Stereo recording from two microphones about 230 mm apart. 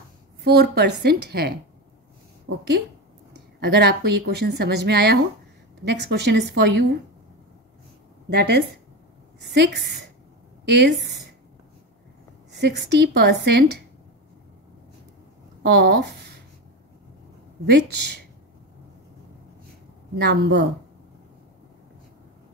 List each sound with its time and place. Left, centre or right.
0.4 s a woman's voice: right
8.3 s a woman's voice: right
12.5 s a woman's voice: right
15.6 s speech: right
17.6 s a woman's voice: right
20.2 s a woman's voice: right